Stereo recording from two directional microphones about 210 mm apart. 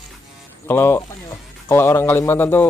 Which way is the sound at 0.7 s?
10° left (ahead or behind).